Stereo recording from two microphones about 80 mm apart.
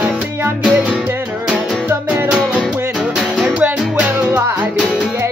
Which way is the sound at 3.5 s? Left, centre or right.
Right.